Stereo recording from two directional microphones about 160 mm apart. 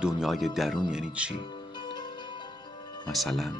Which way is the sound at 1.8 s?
30° left (ahead or behind).